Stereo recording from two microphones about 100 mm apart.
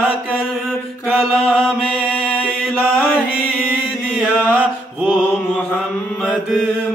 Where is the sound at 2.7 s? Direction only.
20° left (ahead or behind).